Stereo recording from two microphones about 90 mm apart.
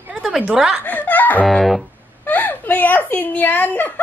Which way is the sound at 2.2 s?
20° left (ahead or behind).